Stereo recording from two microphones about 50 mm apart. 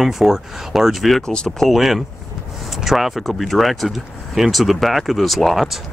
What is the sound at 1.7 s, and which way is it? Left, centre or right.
Speech, centre.